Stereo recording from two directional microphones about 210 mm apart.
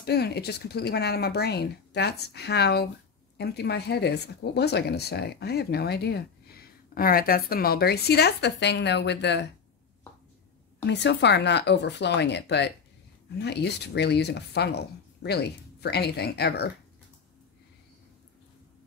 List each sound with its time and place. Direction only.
0.0 s speech: 50° left (ahead or behind)
10.9 s speech: 55° left (ahead or behind)